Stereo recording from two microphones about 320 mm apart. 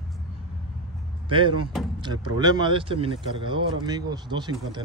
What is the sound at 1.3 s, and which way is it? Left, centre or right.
Speech, centre.